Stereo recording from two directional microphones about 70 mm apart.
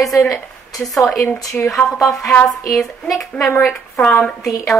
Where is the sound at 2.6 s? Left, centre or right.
Centre.